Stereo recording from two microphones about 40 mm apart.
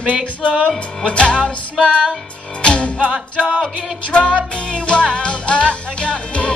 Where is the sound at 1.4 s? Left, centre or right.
Centre.